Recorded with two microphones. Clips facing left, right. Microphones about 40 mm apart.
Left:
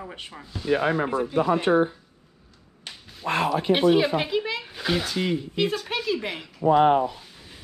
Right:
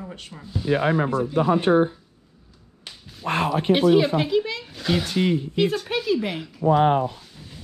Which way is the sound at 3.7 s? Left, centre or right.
Centre.